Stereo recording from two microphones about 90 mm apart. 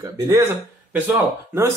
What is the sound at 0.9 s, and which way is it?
Speech, 25° right (ahead or behind).